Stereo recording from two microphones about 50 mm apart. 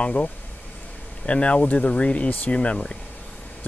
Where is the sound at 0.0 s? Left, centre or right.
Left.